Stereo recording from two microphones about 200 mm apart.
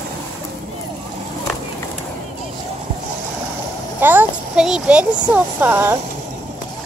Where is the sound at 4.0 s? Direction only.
10° right (ahead or behind).